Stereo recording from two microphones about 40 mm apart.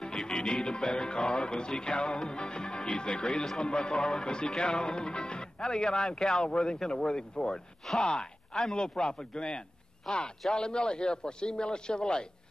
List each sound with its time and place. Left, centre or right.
0.0 s music: centre
10.1 s a man's voice: centre
10.5 s music: left